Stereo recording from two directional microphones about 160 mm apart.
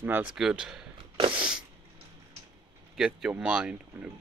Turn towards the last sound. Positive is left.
turn(degrees=-5)  # may be behind; listen again after turning